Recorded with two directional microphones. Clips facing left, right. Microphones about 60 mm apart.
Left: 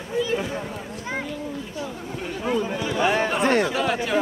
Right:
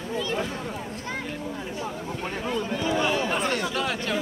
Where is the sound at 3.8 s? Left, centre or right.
Centre.